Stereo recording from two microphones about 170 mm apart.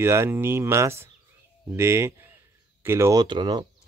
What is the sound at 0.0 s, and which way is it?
A man's voice, 15° right (ahead or behind).